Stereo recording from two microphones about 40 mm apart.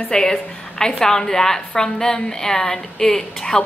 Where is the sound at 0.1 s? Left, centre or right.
Centre.